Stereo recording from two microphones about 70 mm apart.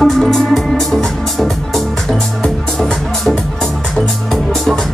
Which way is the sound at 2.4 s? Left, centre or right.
Centre.